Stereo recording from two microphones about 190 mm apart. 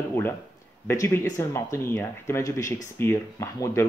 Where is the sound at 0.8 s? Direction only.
15° left (ahead or behind).